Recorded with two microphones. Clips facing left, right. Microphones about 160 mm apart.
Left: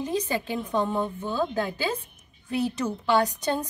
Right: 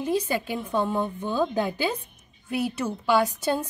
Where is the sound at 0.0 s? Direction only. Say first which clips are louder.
Right 2 dB; 10° right (ahead or behind).